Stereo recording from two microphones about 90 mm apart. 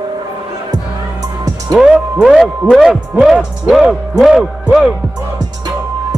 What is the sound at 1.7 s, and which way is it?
Music, 10° right (ahead or behind).